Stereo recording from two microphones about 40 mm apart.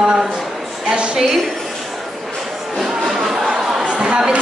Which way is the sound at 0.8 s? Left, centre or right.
Right.